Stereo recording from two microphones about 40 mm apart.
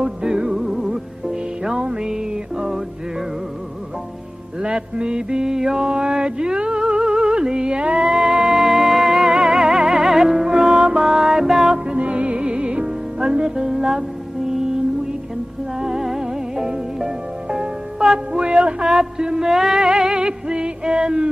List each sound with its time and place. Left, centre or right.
0.0 s music: centre
4.6 s mantra: right; by 9.3 s centre
9.3 s music: centre
11.8 s music: right; by 14.8 s centre
15.8 s music: centre